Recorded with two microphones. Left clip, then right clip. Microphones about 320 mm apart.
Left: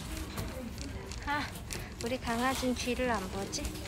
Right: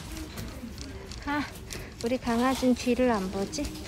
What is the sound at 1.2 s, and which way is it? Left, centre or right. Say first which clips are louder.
Speech: right 3 dB; centre.